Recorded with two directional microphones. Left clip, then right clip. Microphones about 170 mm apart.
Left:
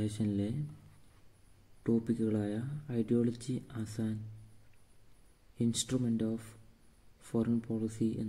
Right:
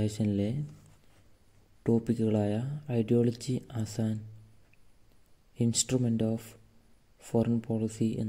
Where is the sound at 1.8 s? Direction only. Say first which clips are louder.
Right 4 dB; 30° right (ahead or behind).